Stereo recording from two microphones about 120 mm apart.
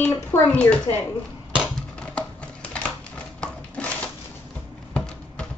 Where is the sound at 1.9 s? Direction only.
10° left (ahead or behind).